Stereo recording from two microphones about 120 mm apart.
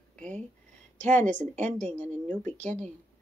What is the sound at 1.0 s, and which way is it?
Speech, 10° left (ahead or behind).